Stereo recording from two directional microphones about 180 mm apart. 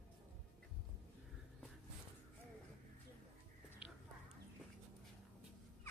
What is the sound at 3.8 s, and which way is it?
Whispering, 5° right (ahead or behind).